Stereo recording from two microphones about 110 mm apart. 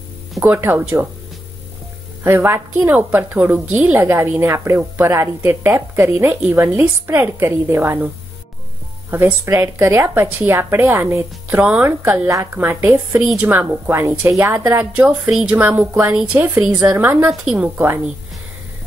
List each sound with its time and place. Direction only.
0.4 s a woman's voice: 20° right (ahead or behind)
2.2 s a woman's voice: 20° right (ahead or behind)
9.1 s a woman's voice: 20° right (ahead or behind)
12.3 s a woman's voice: 25° right (ahead or behind)
13.2 s a woman's voice: 10° right (ahead or behind)
17.3 s a woman's voice: 5° right (ahead or behind)
17.7 s a woman's voice: 25° right (ahead or behind)